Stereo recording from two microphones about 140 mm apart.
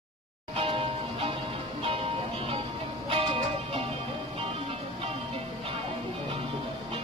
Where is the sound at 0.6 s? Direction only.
40° right (ahead or behind).